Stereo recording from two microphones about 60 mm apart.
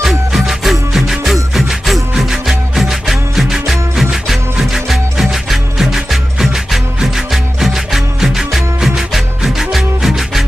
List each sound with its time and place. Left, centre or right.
0.0 s music: centre